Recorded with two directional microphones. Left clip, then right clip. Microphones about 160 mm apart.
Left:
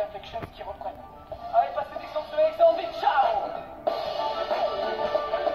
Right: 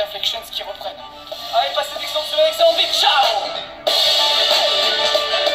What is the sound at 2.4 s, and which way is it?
Music, 20° right (ahead or behind).